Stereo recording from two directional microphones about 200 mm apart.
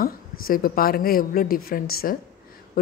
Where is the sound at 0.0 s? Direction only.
45° left (ahead or behind).